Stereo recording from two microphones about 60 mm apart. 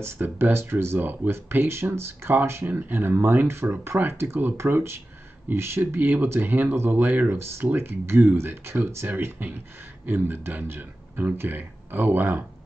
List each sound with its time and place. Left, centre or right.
0.0 s speech: right